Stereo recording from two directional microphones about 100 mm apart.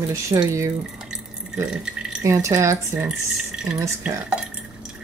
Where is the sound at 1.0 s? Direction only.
10° right (ahead or behind).